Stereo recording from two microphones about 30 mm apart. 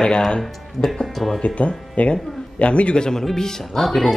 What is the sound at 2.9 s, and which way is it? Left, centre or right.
Speech, left.